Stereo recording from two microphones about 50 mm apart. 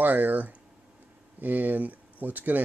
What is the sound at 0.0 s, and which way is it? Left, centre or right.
Speech, right.